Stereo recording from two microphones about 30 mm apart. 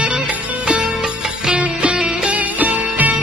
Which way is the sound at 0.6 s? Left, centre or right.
Right.